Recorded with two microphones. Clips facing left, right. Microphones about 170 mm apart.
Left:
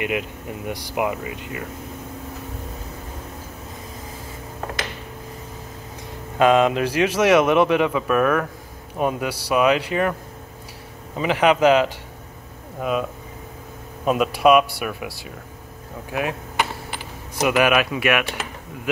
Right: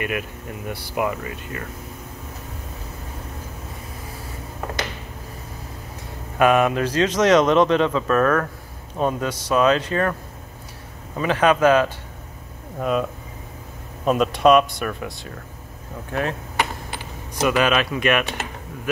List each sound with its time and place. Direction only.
0.0 s speech: 20° left (ahead or behind)
6.3 s speech: 20° left (ahead or behind)
11.1 s speech: 15° left (ahead or behind)
14.0 s speech: 5° left (ahead or behind)
17.4 s speech: 15° left (ahead or behind)